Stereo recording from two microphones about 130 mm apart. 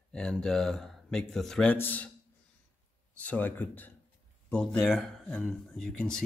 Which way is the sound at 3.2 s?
10° left (ahead or behind).